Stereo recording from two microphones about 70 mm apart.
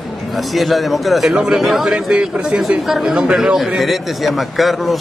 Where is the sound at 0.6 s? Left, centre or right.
Centre.